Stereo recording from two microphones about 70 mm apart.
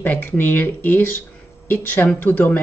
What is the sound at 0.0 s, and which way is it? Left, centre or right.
Speech, left.